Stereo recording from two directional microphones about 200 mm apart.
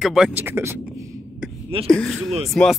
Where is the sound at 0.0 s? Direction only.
Centre (ahead or behind).